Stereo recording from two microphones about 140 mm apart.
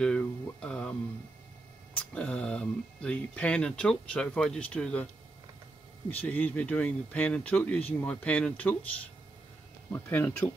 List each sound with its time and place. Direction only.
0.0 s a sound: 5° left (ahead or behind)
2.0 s speech: 10° left (ahead or behind)
6.0 s speech: 10° left (ahead or behind)
9.9 s speech: 15° left (ahead or behind)